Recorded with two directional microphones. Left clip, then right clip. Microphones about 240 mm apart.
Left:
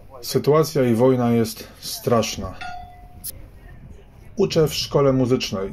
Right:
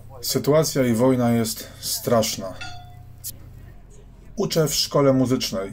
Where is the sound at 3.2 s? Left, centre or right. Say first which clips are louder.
Right 2 dB; centre.